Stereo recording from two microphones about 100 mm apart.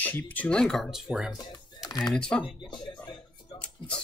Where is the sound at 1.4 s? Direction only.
40° left (ahead or behind).